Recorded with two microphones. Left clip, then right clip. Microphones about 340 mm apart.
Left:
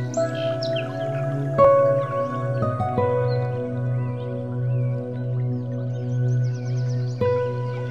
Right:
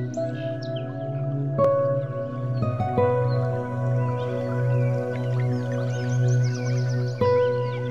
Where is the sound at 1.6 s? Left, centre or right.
Left.